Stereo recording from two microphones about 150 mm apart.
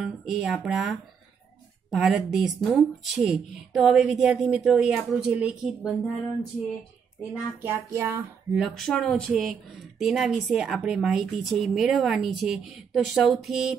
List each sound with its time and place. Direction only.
0.0 s speech: centre (ahead or behind)
7.3 s a sound: 15° right (ahead or behind)
8.5 s speech: centre (ahead or behind)